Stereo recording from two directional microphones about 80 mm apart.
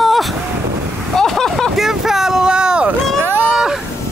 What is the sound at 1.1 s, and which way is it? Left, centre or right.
Vehicle, centre.